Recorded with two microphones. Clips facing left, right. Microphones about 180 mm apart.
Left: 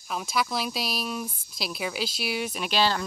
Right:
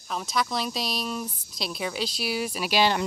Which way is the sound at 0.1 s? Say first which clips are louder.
Even; 5° left (ahead or behind).